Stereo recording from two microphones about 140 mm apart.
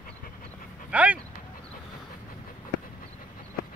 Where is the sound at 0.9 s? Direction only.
10° right (ahead or behind).